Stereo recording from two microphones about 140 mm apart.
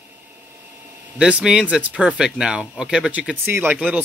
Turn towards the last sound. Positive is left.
turn(degrees=-10)  # may be behind; listen again after turning